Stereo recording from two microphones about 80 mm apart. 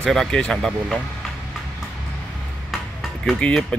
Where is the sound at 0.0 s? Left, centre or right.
Centre.